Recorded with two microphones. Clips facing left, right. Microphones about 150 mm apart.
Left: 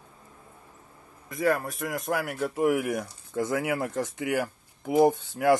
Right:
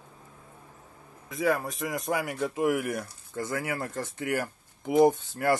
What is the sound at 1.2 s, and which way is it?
Speech, centre (ahead or behind).